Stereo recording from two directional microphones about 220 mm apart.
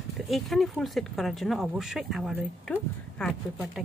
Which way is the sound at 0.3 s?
Centre (ahead or behind).